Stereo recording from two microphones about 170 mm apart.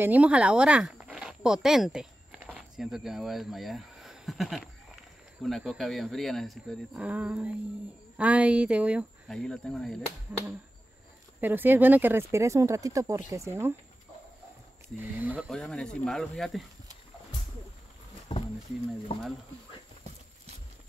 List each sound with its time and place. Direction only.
0.0 s speech: 10° right (ahead or behind)
9.3 s speech: 5° left (ahead or behind)
11.4 s speech: 10° right (ahead or behind)
15.0 s speech: 10° right (ahead or behind)
15.5 s speech: 5° left (ahead or behind)
18.3 s a sound: 30° left (ahead or behind)
19.1 s speech: 30° left (ahead or behind)